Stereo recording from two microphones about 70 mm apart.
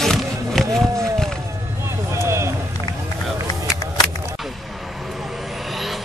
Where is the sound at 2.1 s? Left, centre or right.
Right.